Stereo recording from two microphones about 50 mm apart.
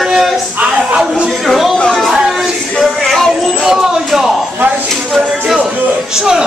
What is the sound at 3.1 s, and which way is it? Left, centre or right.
Speech, centre.